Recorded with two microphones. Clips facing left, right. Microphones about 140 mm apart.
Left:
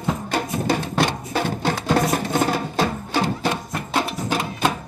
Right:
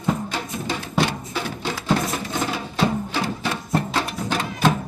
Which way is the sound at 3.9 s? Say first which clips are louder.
Left 2 dB; 10° left (ahead or behind).